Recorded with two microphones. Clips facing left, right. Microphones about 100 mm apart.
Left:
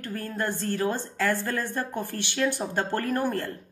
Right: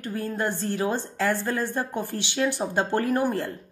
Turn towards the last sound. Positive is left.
turn(degrees=-15)  # may be behind; listen again after turning